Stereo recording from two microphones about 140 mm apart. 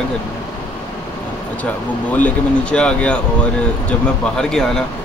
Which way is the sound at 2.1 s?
10° left (ahead or behind).